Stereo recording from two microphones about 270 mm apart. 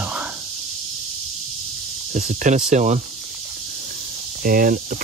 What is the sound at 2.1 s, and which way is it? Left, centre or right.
Speech, right.